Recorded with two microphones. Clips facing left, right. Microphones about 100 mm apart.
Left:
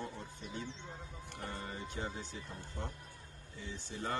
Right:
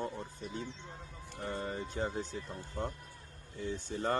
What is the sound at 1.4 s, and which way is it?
Speech, 30° right (ahead or behind).